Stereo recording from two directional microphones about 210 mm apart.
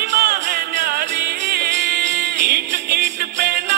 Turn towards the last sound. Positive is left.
turn(degrees=-50)  # may be behind; listen again after turning